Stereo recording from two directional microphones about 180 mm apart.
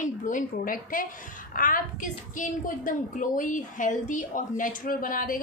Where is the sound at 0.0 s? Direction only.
45° left (ahead or behind).